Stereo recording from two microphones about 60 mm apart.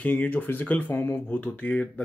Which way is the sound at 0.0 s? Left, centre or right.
Left.